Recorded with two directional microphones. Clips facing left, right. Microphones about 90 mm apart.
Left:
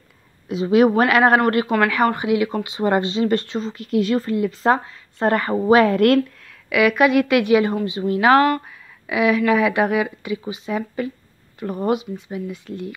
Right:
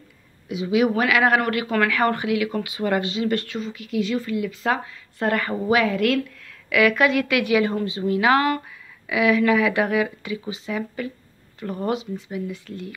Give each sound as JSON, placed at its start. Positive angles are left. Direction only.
{"t": 0.5, "sound": "speech", "side_deg": 40}
{"t": 1.7, "sound": "speech", "side_deg": 20}
{"t": 5.9, "sound": "speech", "side_deg": 50}
{"t": 6.4, "sound": "speech", "side_deg": 20}
{"t": 8.1, "sound": "speech", "side_deg": 30}